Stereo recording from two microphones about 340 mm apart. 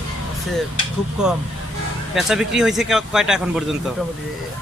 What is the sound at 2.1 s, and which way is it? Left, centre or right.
Speech, centre.